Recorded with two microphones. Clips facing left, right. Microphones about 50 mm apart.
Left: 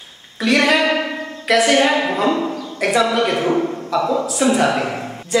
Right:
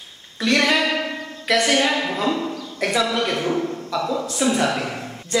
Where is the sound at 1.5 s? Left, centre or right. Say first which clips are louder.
Left 4 dB; centre.